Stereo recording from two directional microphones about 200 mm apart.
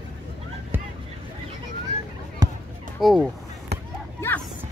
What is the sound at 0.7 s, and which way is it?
Vehicle, 10° right (ahead or behind).